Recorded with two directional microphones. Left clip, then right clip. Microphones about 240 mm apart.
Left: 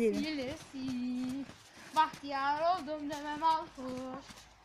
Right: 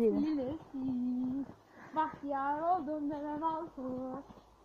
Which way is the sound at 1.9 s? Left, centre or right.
Left.